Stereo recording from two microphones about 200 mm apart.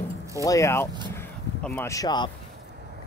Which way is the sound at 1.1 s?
10° left (ahead or behind).